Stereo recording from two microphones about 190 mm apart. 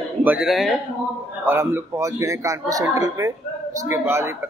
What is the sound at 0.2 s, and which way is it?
Speech, 5° right (ahead or behind).